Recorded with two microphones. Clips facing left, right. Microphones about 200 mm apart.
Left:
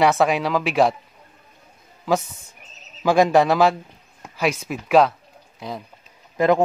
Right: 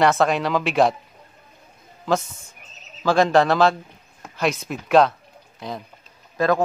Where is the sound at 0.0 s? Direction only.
5° left (ahead or behind).